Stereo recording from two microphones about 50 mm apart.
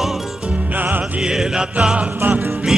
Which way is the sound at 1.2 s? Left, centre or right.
Centre.